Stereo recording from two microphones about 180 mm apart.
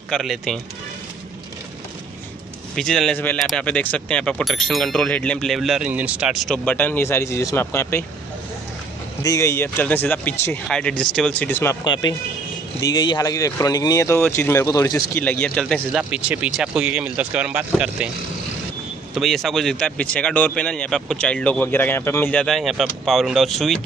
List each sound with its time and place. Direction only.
0.1 s speech: centre (ahead or behind)
2.7 s speech: 5° left (ahead or behind)
9.2 s speech: 15° left (ahead or behind); by 18.1 s 5° right (ahead or behind)
19.1 s speech: centre (ahead or behind)